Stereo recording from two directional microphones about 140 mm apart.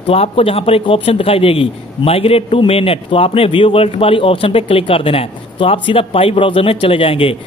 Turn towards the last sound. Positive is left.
turn(degrees=40)  # may be behind; listen again after turning